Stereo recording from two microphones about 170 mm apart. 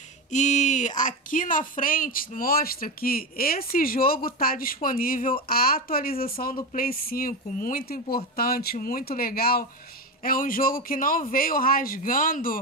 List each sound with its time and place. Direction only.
0.3 s speech: 45° left (ahead or behind)